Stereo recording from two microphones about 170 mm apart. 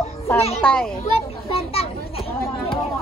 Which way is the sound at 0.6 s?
5° left (ahead or behind).